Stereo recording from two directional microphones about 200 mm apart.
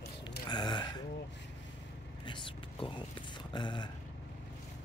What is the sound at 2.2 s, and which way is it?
Speech, 25° left (ahead or behind).